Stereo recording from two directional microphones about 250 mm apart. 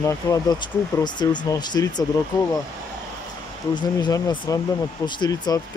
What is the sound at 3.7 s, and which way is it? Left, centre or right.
Speech, centre.